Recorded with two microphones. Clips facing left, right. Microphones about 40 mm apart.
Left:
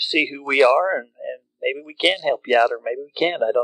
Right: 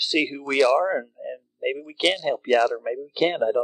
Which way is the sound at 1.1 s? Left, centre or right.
Left.